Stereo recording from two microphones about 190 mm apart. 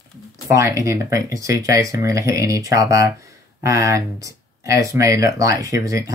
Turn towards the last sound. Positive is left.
turn(degrees=-15)  # may be behind; listen again after turning